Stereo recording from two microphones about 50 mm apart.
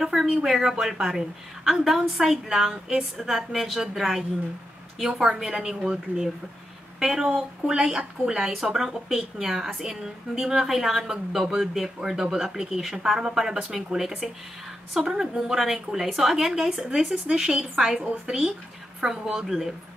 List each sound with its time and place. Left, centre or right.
0.0 s a sound: centre
0.3 s a woman's voice: centre
5.4 s speech: centre